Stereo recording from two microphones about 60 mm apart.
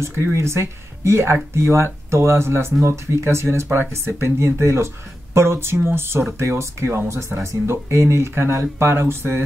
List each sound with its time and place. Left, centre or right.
0.0 s speech: right
3.6 s speech: right
3.9 s speech: right